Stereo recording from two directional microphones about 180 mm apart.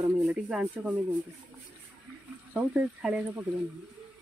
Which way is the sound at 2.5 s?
5° right (ahead or behind).